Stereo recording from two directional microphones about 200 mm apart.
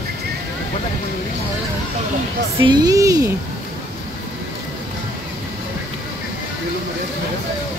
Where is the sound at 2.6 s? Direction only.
20° right (ahead or behind).